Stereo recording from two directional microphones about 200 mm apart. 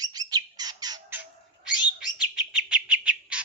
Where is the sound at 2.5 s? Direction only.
5° right (ahead or behind).